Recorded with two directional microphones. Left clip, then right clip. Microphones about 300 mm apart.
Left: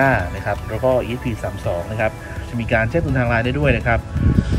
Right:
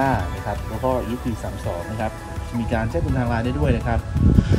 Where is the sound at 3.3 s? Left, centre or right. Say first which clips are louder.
Left 6 dB; centre.